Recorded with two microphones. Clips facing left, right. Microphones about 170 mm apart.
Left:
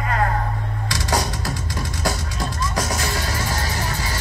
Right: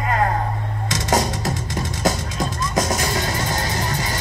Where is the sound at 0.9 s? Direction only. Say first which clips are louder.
Right 4 dB; 20° right (ahead or behind).